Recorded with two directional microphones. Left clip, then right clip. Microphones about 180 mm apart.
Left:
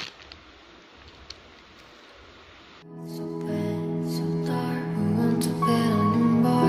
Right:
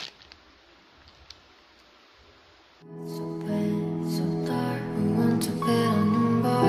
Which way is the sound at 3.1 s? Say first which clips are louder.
Left 1 dB; centre (ahead or behind).